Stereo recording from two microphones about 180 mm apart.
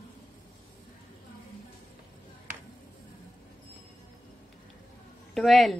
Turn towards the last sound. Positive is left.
turn(degrees=0)  # may be behind; listen again after turning